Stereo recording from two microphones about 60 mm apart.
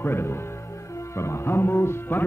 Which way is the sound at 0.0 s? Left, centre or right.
Left.